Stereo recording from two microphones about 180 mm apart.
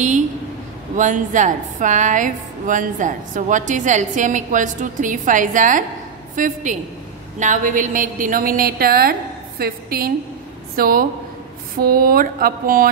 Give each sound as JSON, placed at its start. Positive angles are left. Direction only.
{"t": 0.9, "sound": "a woman's voice", "side_deg": -45}